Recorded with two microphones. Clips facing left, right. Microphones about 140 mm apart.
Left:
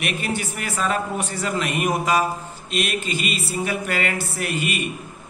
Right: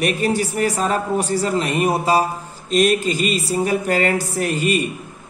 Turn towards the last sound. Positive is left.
turn(degrees=-35)  # may be behind; listen again after turning